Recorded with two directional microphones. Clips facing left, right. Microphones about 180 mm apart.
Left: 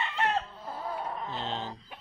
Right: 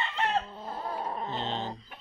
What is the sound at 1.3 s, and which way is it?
Speech, 5° left (ahead or behind).